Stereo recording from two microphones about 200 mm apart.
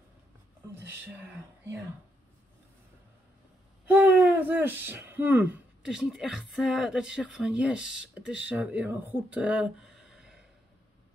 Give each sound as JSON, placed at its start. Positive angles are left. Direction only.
{"t": 0.8, "sound": "speech", "side_deg": -10}
{"t": 3.8, "sound": "speech", "side_deg": -10}